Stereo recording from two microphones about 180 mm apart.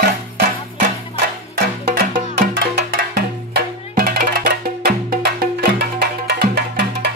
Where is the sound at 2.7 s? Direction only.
65° right (ahead or behind).